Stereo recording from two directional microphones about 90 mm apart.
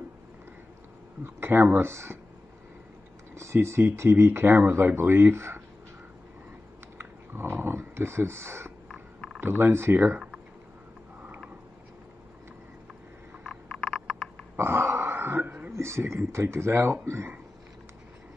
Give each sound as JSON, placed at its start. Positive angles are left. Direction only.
{"t": 1.2, "sound": "speech", "side_deg": -25}
{"t": 3.3, "sound": "speech", "side_deg": -30}
{"t": 7.0, "sound": "a sound", "side_deg": -25}
{"t": 9.4, "sound": "speech", "side_deg": -25}
{"t": 13.4, "sound": "a sound", "side_deg": 5}
{"t": 14.6, "sound": "dog", "side_deg": -25}
{"t": 15.7, "sound": "speech", "side_deg": -30}